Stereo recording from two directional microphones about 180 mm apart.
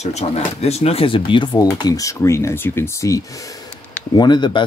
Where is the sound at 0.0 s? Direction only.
35° left (ahead or behind).